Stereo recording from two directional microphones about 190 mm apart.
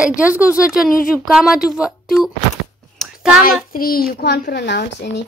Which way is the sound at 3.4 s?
50° left (ahead or behind).